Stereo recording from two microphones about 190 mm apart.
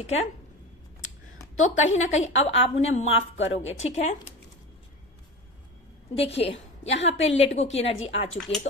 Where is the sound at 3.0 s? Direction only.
35° left (ahead or behind).